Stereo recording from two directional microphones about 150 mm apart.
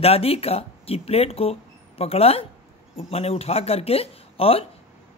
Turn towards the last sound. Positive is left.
turn(degrees=40)  # may be behind; listen again after turning